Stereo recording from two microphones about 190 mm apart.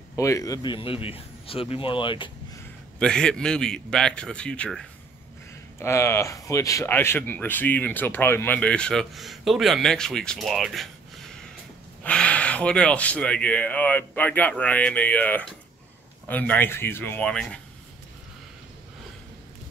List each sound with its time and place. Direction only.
0.1 s speech: 15° left (ahead or behind)
3.0 s a man's voice: 5° left (ahead or behind)
5.8 s speech: 15° left (ahead or behind)
12.0 s speech: 5° left (ahead or behind)